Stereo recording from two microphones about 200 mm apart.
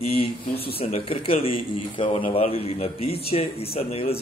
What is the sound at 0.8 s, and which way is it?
Speech, 30° left (ahead or behind).